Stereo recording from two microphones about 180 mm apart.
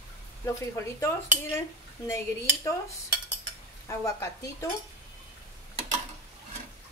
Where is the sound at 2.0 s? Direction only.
15° left (ahead or behind).